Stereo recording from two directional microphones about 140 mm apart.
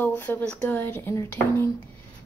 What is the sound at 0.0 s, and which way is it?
Speech, 15° left (ahead or behind).